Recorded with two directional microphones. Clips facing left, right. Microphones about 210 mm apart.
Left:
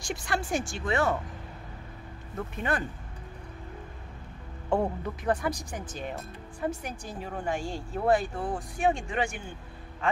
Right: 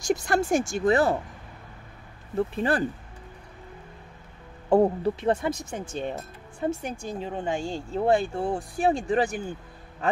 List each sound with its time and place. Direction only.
0.0 s speech: 40° right (ahead or behind)
2.3 s speech: 30° right (ahead or behind)
4.6 s speech: 35° right (ahead or behind)